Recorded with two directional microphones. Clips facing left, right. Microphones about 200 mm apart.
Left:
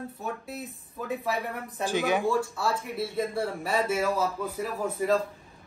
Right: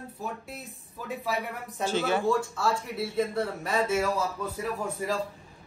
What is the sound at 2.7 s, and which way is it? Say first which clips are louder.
Speech: even; 5° left (ahead or behind).